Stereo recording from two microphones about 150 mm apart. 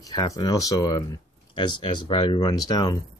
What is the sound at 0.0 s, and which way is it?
Speech, 25° left (ahead or behind).